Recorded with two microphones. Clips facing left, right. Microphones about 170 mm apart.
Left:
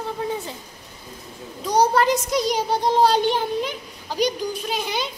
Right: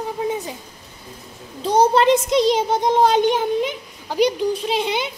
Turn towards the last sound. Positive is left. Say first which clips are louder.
# right 6 dB
turn(degrees=-25)  # may be behind; listen again after turning